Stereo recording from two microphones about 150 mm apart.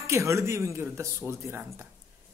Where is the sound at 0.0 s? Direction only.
20° right (ahead or behind).